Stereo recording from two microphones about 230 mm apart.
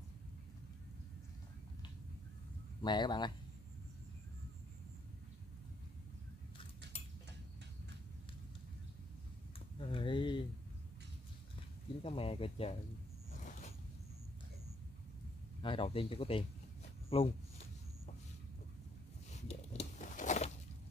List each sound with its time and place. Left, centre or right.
2.8 s speech: centre
9.8 s a sound: left
12.0 s speech: left
13.4 s zipper: left
15.6 s speech: left
19.3 s biting: left